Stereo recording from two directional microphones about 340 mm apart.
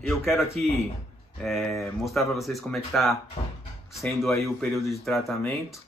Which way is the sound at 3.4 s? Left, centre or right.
Centre.